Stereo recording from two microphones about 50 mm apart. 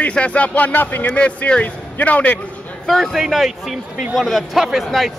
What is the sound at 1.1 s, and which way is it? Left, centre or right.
Speech, left.